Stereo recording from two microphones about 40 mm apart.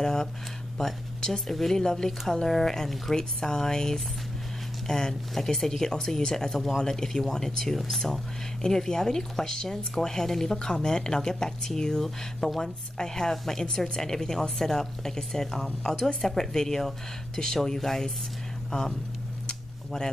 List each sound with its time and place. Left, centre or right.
0.0 s a sound: centre
0.7 s speech: centre
12.0 s speech: centre
12.9 s speech: centre